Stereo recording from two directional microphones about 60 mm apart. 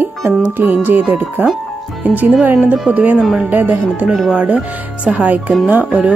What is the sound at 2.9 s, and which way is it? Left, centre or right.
Speech, right.